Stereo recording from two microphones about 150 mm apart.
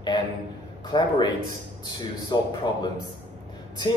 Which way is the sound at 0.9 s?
30° left (ahead or behind).